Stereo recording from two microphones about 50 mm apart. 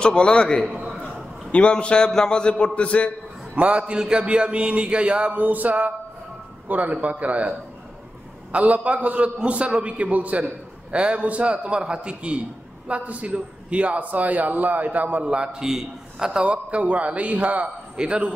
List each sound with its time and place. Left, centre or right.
0.0 s a man's voice: centre
0.7 s a sound: centre
1.0 s a man's voice: left
3.5 s a man's voice: right
5.4 s a man's voice: right
15.2 s a man's voice: centre